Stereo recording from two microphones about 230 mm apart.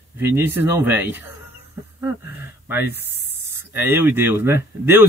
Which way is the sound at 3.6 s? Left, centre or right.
Centre.